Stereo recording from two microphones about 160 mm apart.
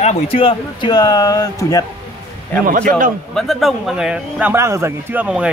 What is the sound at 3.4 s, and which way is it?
Speech, centre (ahead or behind).